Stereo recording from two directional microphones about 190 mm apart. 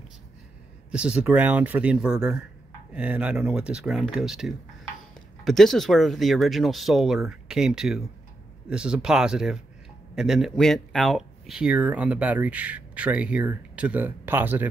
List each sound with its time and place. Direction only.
0.9 s speech: 5° right (ahead or behind)